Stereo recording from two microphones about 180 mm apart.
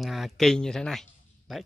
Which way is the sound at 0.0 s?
Centre (ahead or behind).